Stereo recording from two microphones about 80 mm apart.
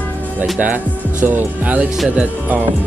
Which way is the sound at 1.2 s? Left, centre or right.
Right.